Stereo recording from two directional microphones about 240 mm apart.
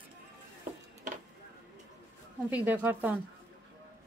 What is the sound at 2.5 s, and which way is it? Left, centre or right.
Speech, centre.